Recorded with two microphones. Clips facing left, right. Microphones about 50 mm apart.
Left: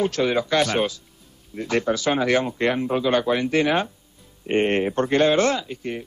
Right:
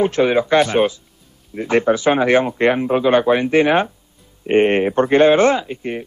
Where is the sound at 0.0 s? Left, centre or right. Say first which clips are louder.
Right 6 dB; right.